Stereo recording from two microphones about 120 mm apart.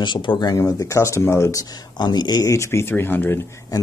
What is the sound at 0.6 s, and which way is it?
Speech, 25° left (ahead or behind).